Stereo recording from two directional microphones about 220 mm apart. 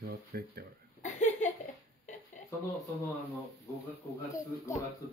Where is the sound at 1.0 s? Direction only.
30° left (ahead or behind).